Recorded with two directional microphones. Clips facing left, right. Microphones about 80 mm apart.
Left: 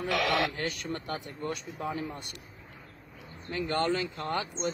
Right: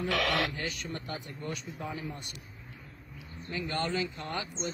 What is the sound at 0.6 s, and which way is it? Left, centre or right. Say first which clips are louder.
Speech: left 3 dB; left.